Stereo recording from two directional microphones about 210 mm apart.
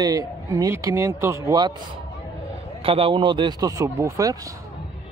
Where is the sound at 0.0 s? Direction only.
15° right (ahead or behind).